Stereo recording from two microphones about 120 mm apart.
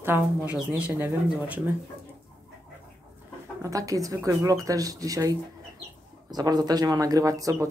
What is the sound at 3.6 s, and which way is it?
Speech, 30° right (ahead or behind).